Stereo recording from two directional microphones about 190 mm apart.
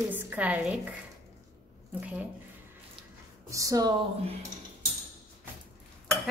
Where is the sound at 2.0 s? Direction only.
10° right (ahead or behind).